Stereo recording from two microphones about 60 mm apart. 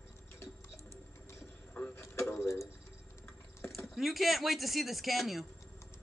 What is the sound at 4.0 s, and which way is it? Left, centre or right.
Speech, centre.